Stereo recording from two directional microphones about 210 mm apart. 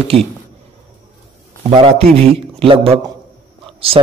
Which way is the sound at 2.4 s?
25° right (ahead or behind).